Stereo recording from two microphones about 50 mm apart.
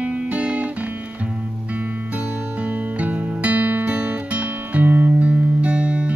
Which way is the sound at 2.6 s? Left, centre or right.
Right.